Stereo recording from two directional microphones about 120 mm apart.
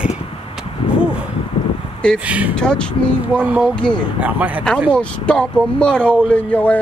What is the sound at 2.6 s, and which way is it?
Speech, 10° left (ahead or behind).